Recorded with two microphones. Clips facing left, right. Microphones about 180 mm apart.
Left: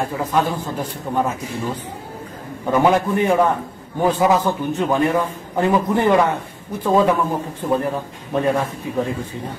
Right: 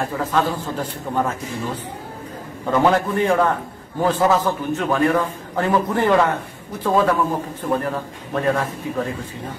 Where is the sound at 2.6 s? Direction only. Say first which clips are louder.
Left 1 dB; 10° left (ahead or behind).